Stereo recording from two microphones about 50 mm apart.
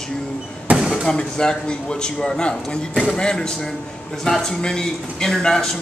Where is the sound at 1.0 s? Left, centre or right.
Centre.